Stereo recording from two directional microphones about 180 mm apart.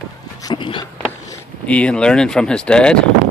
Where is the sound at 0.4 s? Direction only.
25° left (ahead or behind).